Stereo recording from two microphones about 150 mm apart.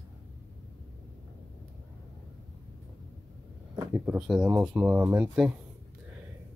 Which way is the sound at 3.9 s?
10° right (ahead or behind).